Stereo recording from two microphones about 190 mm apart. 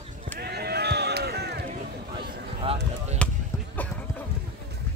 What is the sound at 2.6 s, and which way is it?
Chop, 30° right (ahead or behind).